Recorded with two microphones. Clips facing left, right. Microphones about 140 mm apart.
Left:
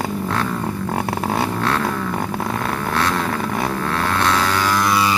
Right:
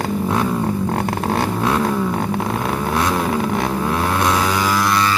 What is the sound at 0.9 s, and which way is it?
Vehicle, 5° left (ahead or behind).